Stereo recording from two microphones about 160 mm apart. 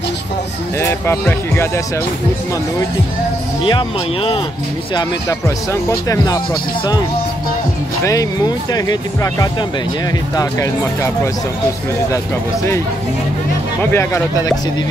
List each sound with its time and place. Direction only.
0.7 s speech: 15° left (ahead or behind)
3.6 s speech: 30° left (ahead or behind)
5.7 s speech: 20° left (ahead or behind)
8.0 s speech: 20° left (ahead or behind)
13.9 s speech: 15° left (ahead or behind)